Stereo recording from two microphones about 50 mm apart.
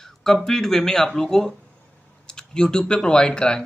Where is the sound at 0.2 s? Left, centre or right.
Centre.